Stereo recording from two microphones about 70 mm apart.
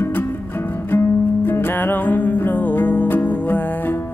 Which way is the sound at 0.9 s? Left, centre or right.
Left.